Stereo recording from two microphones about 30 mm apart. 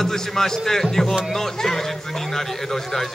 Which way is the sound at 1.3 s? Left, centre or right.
Centre.